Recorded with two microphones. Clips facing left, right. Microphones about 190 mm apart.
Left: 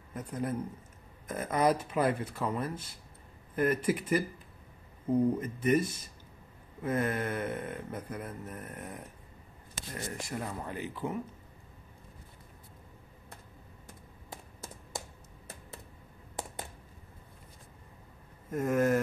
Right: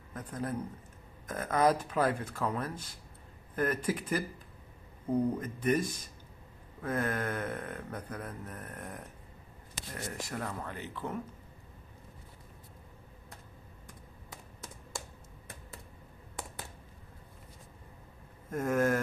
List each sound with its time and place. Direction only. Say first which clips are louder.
0.1 s speech: left 2 dB; 5° left (ahead or behind)
10.1 s speech: left 1 dB; centre (ahead or behind)
10.4 s speech: left 2 dB; 15° left (ahead or behind)
13.8 s computer keyboard: left 4 dB; 25° left (ahead or behind)
18.5 s speech: left 1 dB; 5° left (ahead or behind)